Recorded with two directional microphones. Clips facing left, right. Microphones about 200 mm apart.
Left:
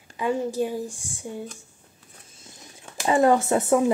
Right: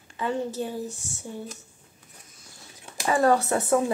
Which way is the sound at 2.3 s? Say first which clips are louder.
Left 4 dB; 20° left (ahead or behind).